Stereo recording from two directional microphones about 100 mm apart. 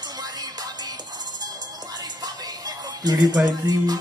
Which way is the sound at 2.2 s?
40° right (ahead or behind).